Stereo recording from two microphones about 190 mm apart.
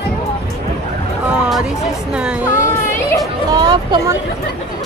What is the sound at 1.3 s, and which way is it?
Music, 5° right (ahead or behind).